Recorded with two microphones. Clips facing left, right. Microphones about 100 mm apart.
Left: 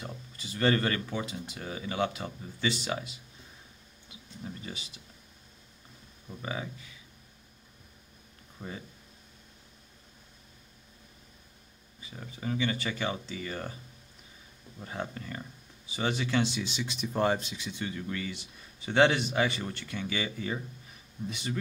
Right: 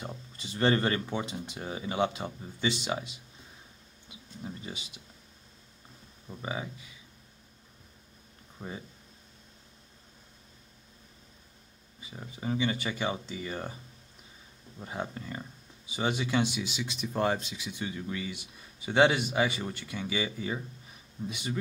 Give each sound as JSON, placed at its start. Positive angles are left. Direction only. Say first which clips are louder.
{"t": 0.0, "sound": "speech", "louder": "right 1 dB", "side_deg": -25}
{"t": 4.4, "sound": "speech", "louder": "right 1 dB", "side_deg": -20}
{"t": 6.4, "sound": "speech", "louder": "right 1 dB", "side_deg": -15}
{"t": 8.5, "sound": "speech", "louder": "right 1 dB", "side_deg": -20}
{"t": 12.0, "sound": "speech", "louder": "even", "side_deg": -20}
{"t": 14.8, "sound": "speech", "louder": "right 1 dB", "side_deg": -15}
{"t": 17.6, "sound": "speech", "louder": "even", "side_deg": -10}